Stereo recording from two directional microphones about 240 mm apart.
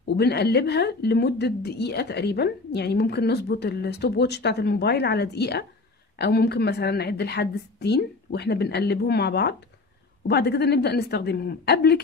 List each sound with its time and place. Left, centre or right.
0.0 s a woman's voice: left